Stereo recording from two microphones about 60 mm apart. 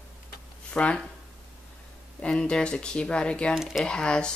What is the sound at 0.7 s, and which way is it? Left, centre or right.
Speech, left.